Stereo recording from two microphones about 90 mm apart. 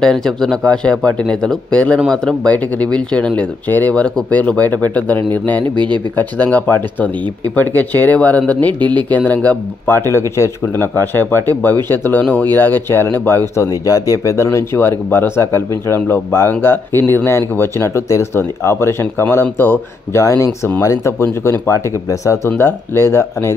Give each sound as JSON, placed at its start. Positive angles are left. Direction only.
{"t": 0.0, "sound": "speech", "side_deg": 5}
{"t": 8.7, "sound": "speech", "side_deg": -55}
{"t": 9.1, "sound": "speech", "side_deg": 20}
{"t": 9.9, "sound": "speech", "side_deg": 30}
{"t": 13.7, "sound": "speech", "side_deg": 40}
{"t": 22.5, "sound": "speech", "side_deg": 25}